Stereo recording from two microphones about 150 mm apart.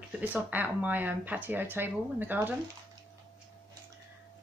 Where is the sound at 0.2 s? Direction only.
10° right (ahead or behind).